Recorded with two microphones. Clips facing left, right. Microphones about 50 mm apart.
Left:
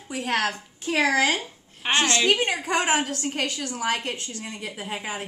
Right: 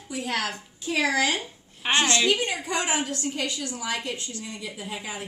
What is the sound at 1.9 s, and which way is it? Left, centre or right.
A woman's voice, left.